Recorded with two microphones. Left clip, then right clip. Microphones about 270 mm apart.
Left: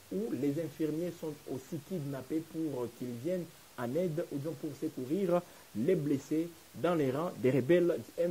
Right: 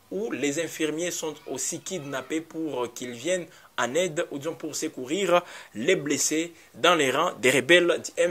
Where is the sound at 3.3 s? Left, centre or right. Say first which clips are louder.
Right 9 dB; centre.